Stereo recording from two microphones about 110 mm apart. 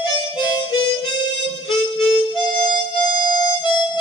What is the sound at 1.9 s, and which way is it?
Harmonica, 55° left (ahead or behind).